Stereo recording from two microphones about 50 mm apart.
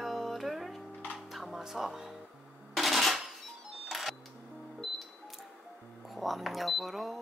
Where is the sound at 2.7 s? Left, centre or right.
Centre.